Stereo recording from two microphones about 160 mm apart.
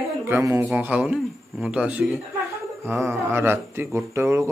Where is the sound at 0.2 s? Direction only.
15° right (ahead or behind).